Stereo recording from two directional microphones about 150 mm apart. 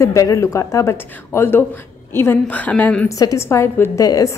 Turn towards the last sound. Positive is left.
turn(degrees=20)  # may be behind; listen again after turning